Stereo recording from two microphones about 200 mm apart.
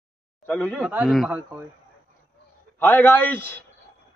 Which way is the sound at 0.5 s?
10° left (ahead or behind).